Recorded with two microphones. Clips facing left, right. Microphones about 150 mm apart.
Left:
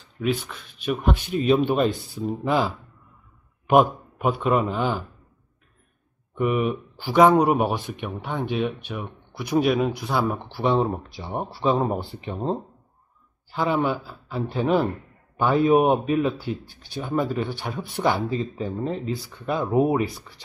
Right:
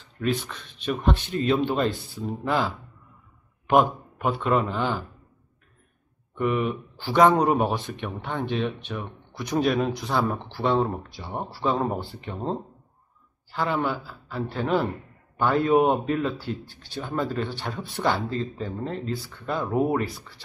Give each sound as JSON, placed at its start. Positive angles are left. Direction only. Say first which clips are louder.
{"t": 0.2, "sound": "a man's voice", "louder": "left 1 dB", "side_deg": 5}
{"t": 6.5, "sound": "a man's voice", "louder": "left 2 dB", "side_deg": 10}